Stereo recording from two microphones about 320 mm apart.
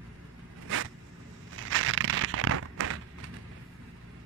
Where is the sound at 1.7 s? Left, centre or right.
Right.